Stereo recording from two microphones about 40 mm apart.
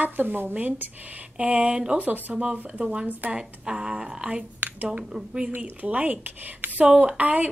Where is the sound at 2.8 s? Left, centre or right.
Right.